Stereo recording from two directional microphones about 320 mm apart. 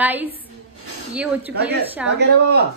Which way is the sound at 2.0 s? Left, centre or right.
Centre.